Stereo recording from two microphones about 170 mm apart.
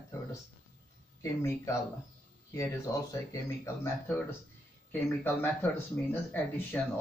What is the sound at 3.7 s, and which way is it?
Speech, 15° left (ahead or behind).